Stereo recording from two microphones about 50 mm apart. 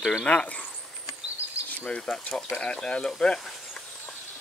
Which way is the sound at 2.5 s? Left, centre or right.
Left.